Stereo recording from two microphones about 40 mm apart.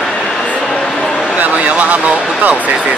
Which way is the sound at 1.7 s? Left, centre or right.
Right.